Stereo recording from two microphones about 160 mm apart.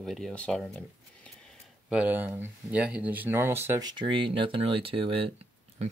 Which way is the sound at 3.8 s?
25° right (ahead or behind).